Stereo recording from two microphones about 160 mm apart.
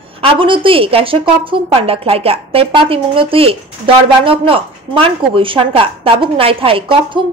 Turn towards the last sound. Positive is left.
turn(degrees=-35)  # may be behind; listen again after turning